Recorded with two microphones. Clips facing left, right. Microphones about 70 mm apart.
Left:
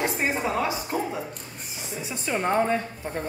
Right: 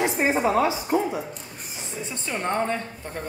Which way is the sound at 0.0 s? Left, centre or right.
Right.